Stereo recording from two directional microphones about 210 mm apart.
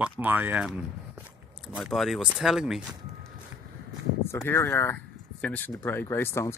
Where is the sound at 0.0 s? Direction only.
10° right (ahead or behind).